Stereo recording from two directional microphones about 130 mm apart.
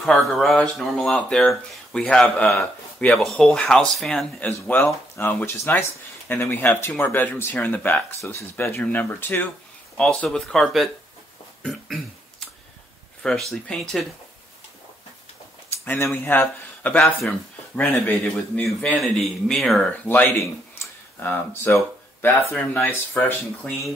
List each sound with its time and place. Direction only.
0.0 s speech: centre (ahead or behind)
13.2 s speech: centre (ahead or behind)
15.8 s speech: 20° left (ahead or behind)
18.1 s speech: centre (ahead or behind)
20.1 s speech: 15° left (ahead or behind)